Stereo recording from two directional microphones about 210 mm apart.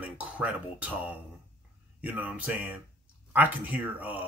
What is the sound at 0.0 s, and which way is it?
Speech, 5° right (ahead or behind).